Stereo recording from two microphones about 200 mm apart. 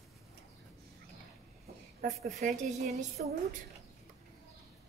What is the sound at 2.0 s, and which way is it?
A woman's voice, 40° right (ahead or behind).